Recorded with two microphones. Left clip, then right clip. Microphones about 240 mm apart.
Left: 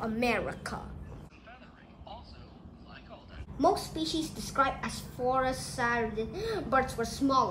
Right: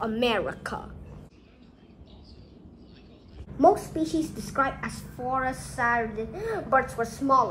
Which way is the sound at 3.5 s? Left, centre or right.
Right.